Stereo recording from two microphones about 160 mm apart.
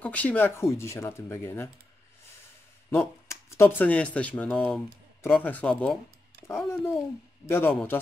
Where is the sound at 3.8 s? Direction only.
10° left (ahead or behind).